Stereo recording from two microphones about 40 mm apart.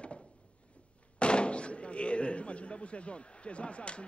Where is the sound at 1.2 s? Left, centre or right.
Left.